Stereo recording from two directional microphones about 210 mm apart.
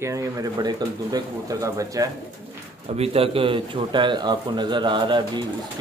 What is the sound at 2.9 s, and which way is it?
Speech, 25° right (ahead or behind).